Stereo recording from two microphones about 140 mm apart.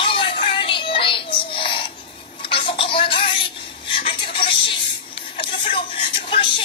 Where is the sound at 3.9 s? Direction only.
40° left (ahead or behind).